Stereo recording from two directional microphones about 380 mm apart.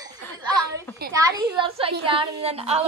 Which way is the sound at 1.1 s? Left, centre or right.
Centre.